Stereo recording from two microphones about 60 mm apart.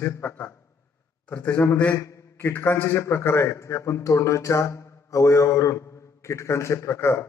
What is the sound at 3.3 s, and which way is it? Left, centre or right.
A man's voice, left.